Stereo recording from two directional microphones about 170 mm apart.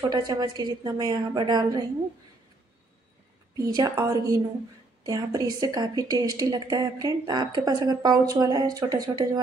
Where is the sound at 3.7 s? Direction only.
20° right (ahead or behind).